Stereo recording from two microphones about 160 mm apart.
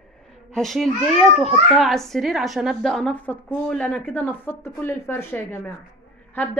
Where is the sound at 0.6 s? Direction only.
Centre (ahead or behind).